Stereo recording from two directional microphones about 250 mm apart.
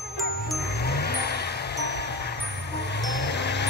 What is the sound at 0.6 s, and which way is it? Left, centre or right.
Music, left.